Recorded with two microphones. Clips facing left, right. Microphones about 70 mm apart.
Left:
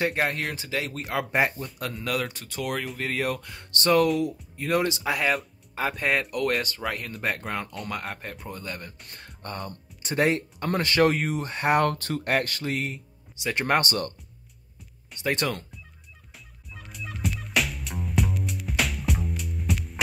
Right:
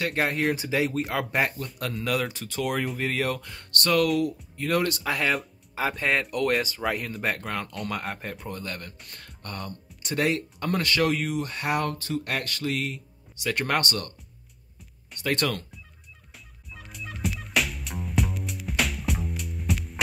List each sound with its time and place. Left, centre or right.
0.1 s speech: centre
3.7 s speech: left
4.6 s speech: centre
5.1 s speech: centre
9.2 s music: left
10.0 s speech: left
11.8 s speech: left
12.3 s speech: left
13.4 s speech: centre
15.1 s speech: centre
16.7 s music: centre